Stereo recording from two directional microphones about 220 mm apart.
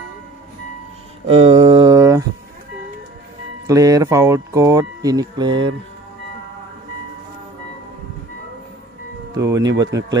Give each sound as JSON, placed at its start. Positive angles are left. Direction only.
{"t": 1.2, "sound": "mantra", "side_deg": -25}
{"t": 3.6, "sound": "speech", "side_deg": -15}
{"t": 9.3, "sound": "speech", "side_deg": -15}